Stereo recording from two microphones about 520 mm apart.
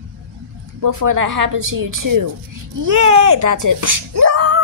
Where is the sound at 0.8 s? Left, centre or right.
Right.